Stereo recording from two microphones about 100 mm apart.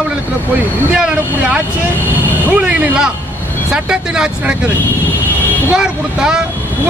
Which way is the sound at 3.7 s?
10° right (ahead or behind).